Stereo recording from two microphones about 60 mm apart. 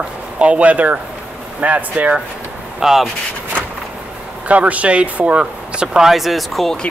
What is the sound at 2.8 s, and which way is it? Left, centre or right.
Speech, centre.